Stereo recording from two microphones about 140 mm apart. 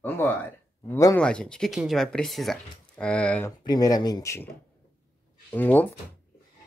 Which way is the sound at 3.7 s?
30° left (ahead or behind).